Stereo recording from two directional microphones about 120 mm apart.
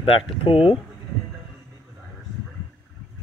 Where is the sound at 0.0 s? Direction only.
50° left (ahead or behind).